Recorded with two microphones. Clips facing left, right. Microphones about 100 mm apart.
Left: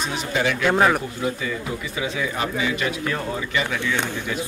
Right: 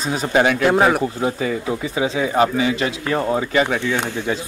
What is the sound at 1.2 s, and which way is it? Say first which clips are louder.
Speech: right 5 dB; 35° right (ahead or behind).